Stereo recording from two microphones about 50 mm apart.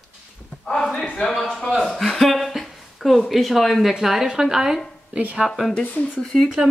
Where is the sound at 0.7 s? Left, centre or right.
Centre.